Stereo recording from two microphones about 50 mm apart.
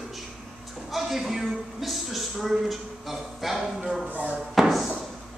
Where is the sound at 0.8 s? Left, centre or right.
Centre.